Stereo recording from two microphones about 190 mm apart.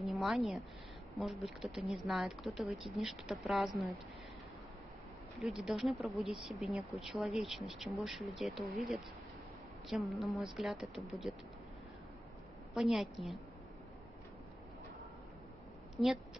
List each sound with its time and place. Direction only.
0.0 s a woman's voice: centre (ahead or behind)
5.6 s speech: centre (ahead or behind)
10.1 s speech: centre (ahead or behind)
12.7 s speech: centre (ahead or behind)
16.0 s speech: centre (ahead or behind)